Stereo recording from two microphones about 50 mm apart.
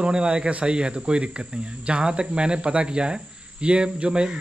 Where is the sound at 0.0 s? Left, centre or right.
Right.